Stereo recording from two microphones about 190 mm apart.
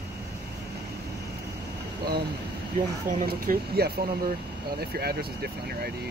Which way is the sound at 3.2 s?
50° right (ahead or behind).